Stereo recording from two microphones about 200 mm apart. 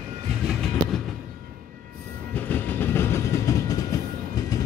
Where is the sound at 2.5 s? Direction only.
10° left (ahead or behind).